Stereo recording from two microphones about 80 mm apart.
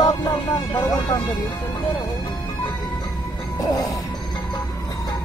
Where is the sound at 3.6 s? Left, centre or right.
Left.